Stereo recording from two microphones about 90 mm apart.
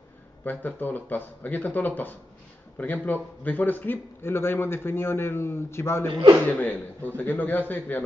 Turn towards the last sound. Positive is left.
turn(degrees=20)  # may be behind; listen again after turning